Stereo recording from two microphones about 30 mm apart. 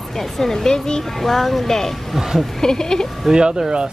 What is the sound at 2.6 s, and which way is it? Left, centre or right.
Speech, left.